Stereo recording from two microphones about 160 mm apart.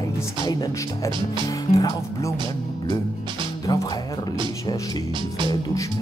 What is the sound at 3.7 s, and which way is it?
Speech, 25° left (ahead or behind).